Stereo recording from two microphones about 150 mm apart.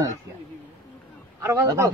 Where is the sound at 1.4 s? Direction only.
20° right (ahead or behind).